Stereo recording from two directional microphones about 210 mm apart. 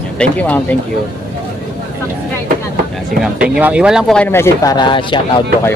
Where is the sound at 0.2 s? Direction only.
5° left (ahead or behind).